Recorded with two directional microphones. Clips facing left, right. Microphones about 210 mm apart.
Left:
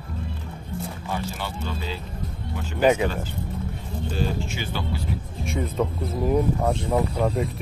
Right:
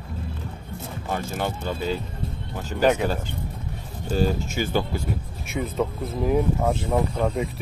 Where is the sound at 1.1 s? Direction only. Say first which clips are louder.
Right 4 dB; 50° right (ahead or behind).